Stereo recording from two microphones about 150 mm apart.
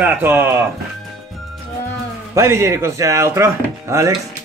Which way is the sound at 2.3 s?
20° right (ahead or behind).